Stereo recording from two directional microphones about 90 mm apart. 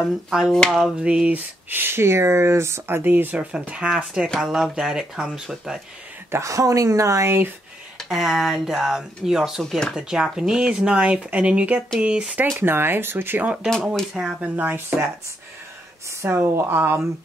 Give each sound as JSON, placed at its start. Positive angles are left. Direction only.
{"t": 0.5, "sound": "speech", "side_deg": 5}
{"t": 0.9, "sound": "speech", "side_deg": -10}
{"t": 3.0, "sound": "speech", "side_deg": -20}
{"t": 6.3, "sound": "a woman's voice", "side_deg": -35}
{"t": 8.0, "sound": "speech", "side_deg": 0}
{"t": 9.9, "sound": "speech", "side_deg": -5}
{"t": 12.5, "sound": "speech", "side_deg": -25}
{"t": 13.7, "sound": "speech", "side_deg": 5}
{"t": 14.1, "sound": "speech", "side_deg": -15}
{"t": 16.2, "sound": "speech", "side_deg": -25}